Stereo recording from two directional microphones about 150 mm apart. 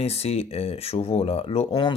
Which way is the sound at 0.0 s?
45° left (ahead or behind).